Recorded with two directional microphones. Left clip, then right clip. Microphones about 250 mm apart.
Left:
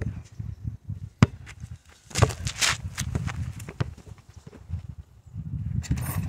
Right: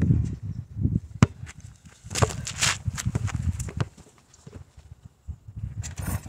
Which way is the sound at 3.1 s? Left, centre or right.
Centre.